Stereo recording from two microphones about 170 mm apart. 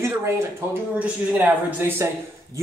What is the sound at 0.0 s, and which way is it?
Speech, 15° right (ahead or behind).